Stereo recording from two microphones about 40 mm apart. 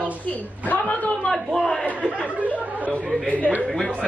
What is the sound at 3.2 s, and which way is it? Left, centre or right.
Speech, left.